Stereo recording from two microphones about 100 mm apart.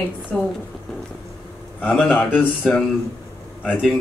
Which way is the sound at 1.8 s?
15° left (ahead or behind).